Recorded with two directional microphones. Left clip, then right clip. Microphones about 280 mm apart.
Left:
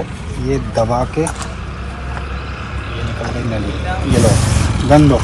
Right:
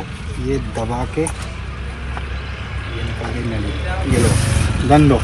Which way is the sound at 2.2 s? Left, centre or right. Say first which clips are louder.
Left 3 dB; left.